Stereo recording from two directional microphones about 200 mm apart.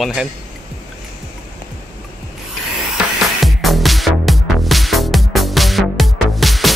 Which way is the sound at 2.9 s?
Centre (ahead or behind).